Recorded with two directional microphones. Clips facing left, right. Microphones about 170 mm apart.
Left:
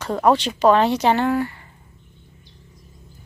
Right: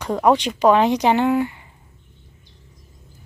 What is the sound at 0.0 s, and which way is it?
Speech, 15° right (ahead or behind).